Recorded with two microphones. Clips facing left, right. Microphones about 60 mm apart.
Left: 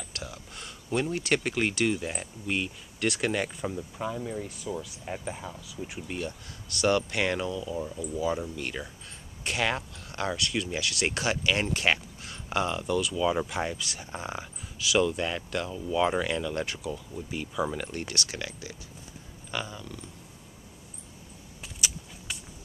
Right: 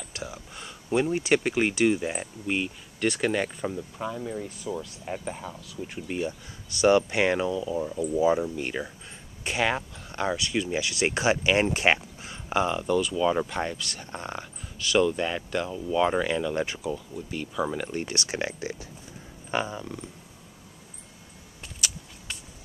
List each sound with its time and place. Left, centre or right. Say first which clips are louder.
0.1 s a sound: right 3 dB; centre
0.8 s speech: right 4 dB; centre
6.0 s speech: right 7 dB; centre
17.6 s speech: right 3 dB; centre; by 20.1 s right
21.8 s vehicle: even; centre